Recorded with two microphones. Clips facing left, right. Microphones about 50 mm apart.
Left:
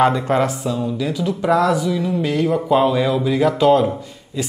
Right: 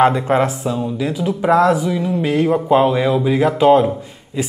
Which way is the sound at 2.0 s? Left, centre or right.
Centre.